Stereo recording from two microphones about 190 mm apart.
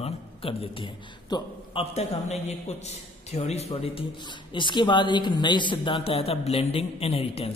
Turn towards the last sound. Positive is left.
turn(degrees=30)  # may be behind; listen again after turning